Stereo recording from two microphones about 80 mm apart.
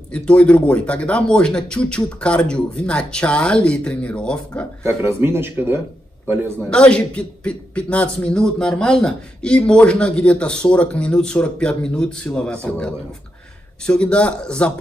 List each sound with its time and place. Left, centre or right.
0.1 s a man's voice: centre
4.8 s a man's voice: right
6.7 s a man's voice: centre